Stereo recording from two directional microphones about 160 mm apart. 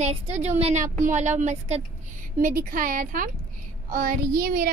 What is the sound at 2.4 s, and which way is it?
A child's voice, 65° right (ahead or behind).